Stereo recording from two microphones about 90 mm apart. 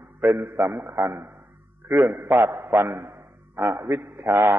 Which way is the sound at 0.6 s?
5° right (ahead or behind).